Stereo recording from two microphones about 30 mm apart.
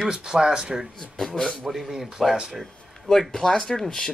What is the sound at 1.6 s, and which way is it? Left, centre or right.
Speech, centre.